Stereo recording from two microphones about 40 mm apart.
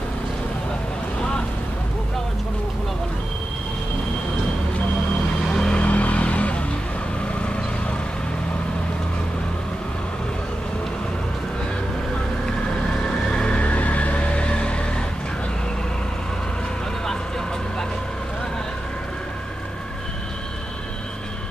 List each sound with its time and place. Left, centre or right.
5.5 s vehicle: centre
5.8 s a sound: left
7.4 s vehicle: left
13.3 s music: left
13.6 s vehicle: left